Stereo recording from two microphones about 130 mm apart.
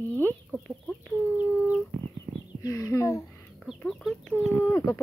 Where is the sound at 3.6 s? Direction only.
Centre (ahead or behind).